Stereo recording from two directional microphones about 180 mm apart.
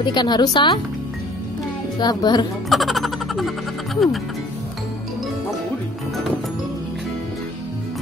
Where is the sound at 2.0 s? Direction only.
25° left (ahead or behind).